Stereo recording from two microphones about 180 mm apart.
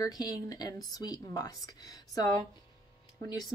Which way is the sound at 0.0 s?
20° left (ahead or behind).